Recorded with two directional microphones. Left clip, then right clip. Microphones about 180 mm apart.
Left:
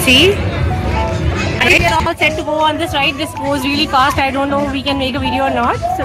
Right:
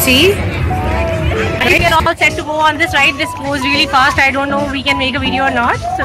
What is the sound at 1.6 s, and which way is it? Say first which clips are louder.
Speech: even; centre (ahead or behind).